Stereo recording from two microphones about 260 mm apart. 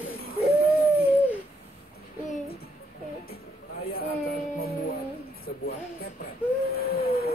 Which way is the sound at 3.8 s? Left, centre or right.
Left.